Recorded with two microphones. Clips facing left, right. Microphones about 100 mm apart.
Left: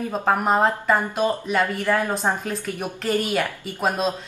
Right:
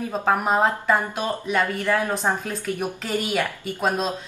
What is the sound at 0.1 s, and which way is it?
A woman's voice, centre (ahead or behind).